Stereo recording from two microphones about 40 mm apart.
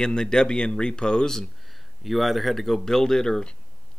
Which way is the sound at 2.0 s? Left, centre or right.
Centre.